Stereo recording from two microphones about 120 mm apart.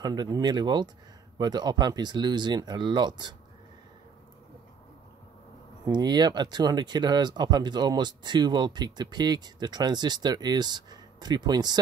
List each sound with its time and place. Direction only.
0.0 s speech: 35° right (ahead or behind)
5.9 s speech: 35° right (ahead or behind)